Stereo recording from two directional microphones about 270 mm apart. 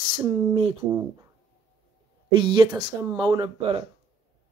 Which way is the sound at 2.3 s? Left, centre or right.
Centre.